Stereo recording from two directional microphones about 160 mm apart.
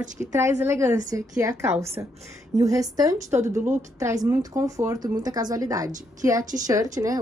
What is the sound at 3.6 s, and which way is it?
Speech, 50° right (ahead or behind).